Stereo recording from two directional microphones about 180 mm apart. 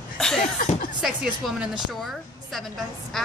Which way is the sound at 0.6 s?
50° left (ahead or behind).